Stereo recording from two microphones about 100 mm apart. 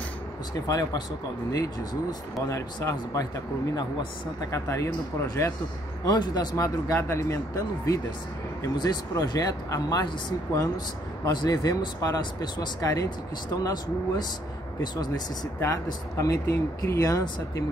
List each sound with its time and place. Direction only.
0.7 s speech: 40° left (ahead or behind)
2.4 s speech: 30° left (ahead or behind)
4.5 s speech: 30° left (ahead or behind)
11.2 s speech: 40° left (ahead or behind)
15.6 s speech: 30° left (ahead or behind)